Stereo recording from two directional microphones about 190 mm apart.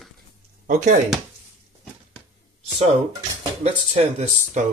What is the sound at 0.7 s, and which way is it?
Speech, 40° right (ahead or behind).